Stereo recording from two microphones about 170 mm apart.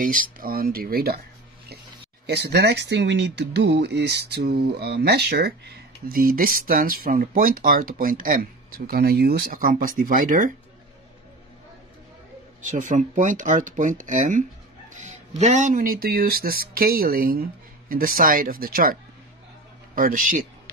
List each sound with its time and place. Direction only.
0.0 s speech: 55° right (ahead or behind)
2.2 s speech: 75° right (ahead or behind); by 10.5 s 50° right (ahead or behind)
12.6 s speech: 50° right (ahead or behind)
20.0 s speech: 50° right (ahead or behind)